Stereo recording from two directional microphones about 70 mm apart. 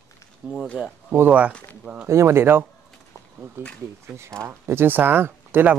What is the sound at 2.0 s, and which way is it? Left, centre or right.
Speech, right.